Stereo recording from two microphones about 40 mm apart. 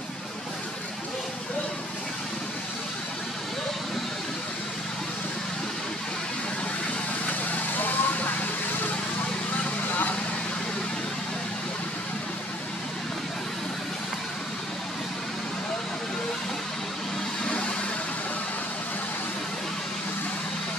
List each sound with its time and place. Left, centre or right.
7.7 s vehicle: left
17.5 s vehicle: left